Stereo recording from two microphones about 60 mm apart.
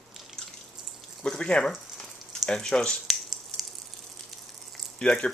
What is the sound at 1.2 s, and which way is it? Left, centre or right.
Speech, centre.